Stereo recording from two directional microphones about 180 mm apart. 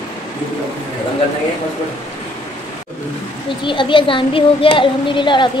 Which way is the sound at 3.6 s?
25° left (ahead or behind).